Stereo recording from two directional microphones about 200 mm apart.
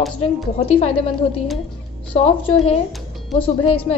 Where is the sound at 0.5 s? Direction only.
30° left (ahead or behind).